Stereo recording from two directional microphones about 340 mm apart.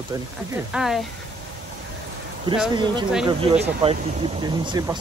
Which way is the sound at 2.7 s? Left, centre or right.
Centre.